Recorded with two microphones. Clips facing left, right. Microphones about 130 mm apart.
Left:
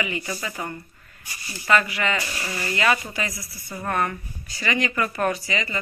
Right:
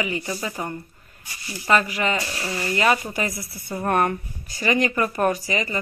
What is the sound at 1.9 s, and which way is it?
Speech, 40° right (ahead or behind).